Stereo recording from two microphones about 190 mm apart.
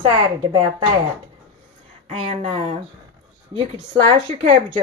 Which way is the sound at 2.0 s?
35° right (ahead or behind).